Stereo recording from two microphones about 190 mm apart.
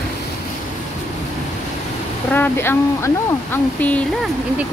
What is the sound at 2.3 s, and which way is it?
Speech, 10° left (ahead or behind).